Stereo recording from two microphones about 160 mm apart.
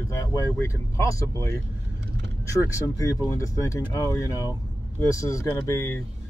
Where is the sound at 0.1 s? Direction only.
20° left (ahead or behind).